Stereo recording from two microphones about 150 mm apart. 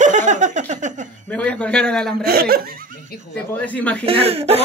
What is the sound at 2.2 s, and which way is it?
Speech, 90° right.